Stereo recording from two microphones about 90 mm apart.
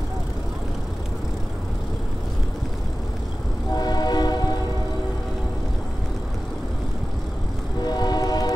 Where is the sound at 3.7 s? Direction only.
45° left (ahead or behind).